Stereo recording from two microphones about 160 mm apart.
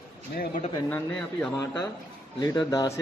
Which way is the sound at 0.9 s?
5° left (ahead or behind).